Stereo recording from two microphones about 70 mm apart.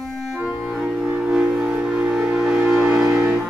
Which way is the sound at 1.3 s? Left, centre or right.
Centre.